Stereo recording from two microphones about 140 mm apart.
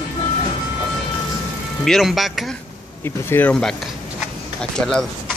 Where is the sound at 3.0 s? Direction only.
15° left (ahead or behind).